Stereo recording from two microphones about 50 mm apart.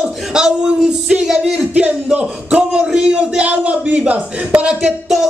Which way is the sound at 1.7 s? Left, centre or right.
Right.